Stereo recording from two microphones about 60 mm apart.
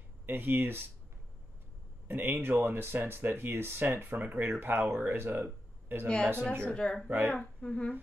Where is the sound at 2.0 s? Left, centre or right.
Right.